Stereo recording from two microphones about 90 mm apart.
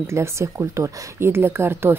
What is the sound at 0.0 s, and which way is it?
Speech, 30° right (ahead or behind).